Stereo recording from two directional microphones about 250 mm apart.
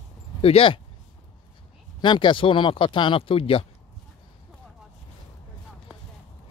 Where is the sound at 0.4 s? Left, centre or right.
Left.